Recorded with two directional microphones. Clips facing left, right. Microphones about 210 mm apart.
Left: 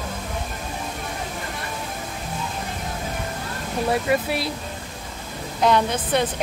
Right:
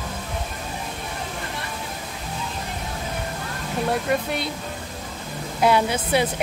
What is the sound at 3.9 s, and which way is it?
Speech, 5° left (ahead or behind).